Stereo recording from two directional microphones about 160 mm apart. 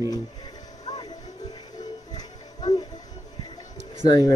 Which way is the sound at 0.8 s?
25° left (ahead or behind).